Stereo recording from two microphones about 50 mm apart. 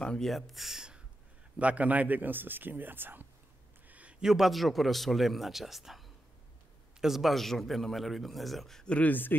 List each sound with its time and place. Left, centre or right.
0.0 s speech: centre
0.3 s a man's voice: centre
0.7 s a sound: centre
1.6 s a man's voice: right
3.9 s a sound: right
4.2 s a man's voice: centre
8.8 s speech: left
9.1 s speech: left